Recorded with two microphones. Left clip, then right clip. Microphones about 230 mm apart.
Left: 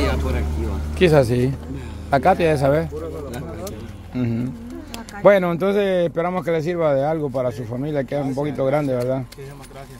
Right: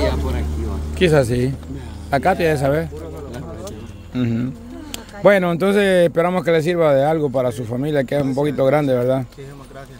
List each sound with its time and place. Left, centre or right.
0.9 s speech: centre
4.1 s a man's voice: centre